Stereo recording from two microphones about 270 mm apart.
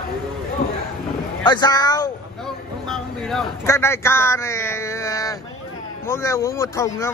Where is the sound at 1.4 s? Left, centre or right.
Centre.